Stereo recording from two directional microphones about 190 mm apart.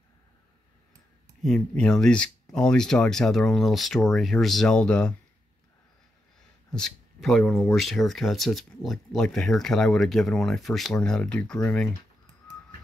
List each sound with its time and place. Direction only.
1.4 s speech: 5° left (ahead or behind)
6.7 s speech: centre (ahead or behind)